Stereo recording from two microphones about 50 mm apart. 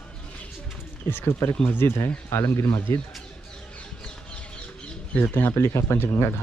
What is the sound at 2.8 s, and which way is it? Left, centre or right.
Speech, left.